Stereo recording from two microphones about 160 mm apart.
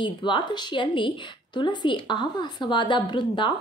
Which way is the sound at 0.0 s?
30° left (ahead or behind).